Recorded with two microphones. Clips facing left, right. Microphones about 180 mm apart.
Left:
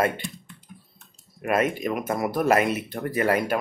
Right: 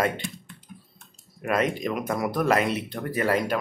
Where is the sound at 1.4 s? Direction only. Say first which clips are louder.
Left 1 dB; 5° left (ahead or behind).